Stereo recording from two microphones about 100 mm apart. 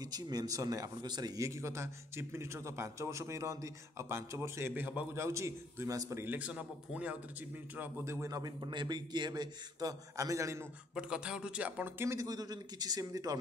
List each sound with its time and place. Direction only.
0.0 s a man's voice: 40° right (ahead or behind)
6.2 s a man's voice: 15° right (ahead or behind); by 10.7 s 30° right (ahead or behind)
11.0 s a man's voice: 10° right (ahead or behind)
12.0 s a man's voice: 25° right (ahead or behind)
12.3 s a man's voice: 40° right (ahead or behind)